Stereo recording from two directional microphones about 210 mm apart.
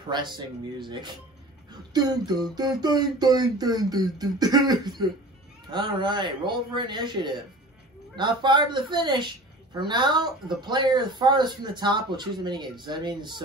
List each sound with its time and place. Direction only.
0.7 s a man's voice: 20° right (ahead or behind)